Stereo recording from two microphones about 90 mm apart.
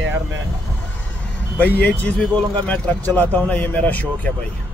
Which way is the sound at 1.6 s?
15° left (ahead or behind).